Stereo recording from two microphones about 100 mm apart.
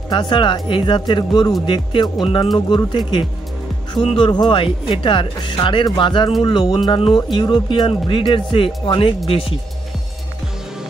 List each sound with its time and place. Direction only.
0.1 s speech: 55° left (ahead or behind)
9.3 s speech: 70° left (ahead or behind)